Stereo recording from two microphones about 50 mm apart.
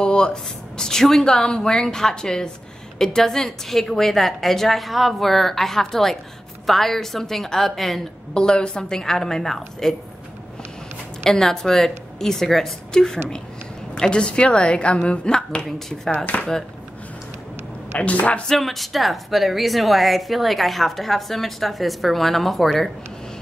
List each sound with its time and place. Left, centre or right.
0.0 s a woman's voice: centre
8.4 s a woman's voice: centre
11.2 s a woman's voice: centre
16.3 s speech: left
17.9 s a woman's voice: left
18.5 s speech: centre